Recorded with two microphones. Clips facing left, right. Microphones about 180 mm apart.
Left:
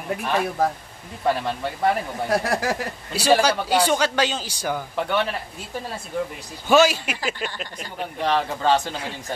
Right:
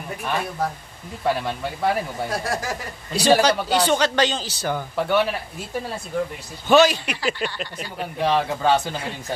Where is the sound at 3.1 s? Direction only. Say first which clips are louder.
Right 2 dB; 5° left (ahead or behind).